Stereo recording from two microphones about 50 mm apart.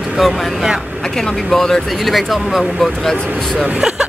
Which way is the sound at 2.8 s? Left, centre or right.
Centre.